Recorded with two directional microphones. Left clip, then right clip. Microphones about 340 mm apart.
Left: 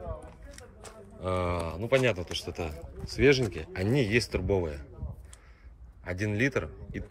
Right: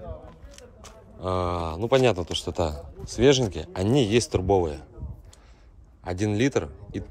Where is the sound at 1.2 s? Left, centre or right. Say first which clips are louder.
Right 4 dB; centre.